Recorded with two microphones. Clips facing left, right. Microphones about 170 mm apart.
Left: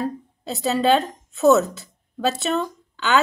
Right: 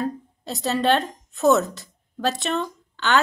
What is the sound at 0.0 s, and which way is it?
A woman's voice, 5° left (ahead or behind).